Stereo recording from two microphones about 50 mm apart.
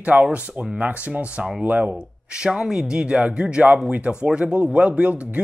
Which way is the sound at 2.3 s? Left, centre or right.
Centre.